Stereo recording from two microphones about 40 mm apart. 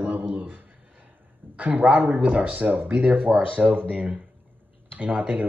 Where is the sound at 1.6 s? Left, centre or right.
Right.